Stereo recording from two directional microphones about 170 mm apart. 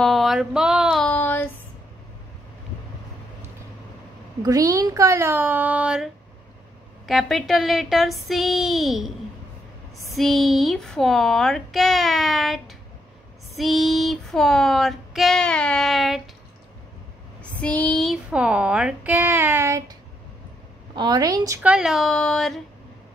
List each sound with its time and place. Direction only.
0.0 s a sound: centre (ahead or behind)
1.0 s a sound: 10° left (ahead or behind)
4.4 s speech: 20° right (ahead or behind)
7.1 s speech: centre (ahead or behind)
10.1 s speech: centre (ahead or behind)
17.4 s speech: 10° left (ahead or behind); by 19.8 s 15° right (ahead or behind)
20.9 s a woman's voice: 25° right (ahead or behind)
21.6 s speech: 5° right (ahead or behind)